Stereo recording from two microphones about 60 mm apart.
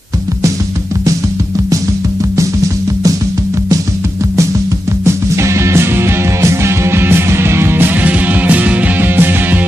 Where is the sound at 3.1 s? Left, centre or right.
Right.